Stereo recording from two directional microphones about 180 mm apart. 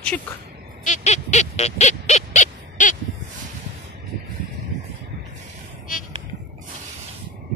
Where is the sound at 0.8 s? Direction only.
40° left (ahead or behind).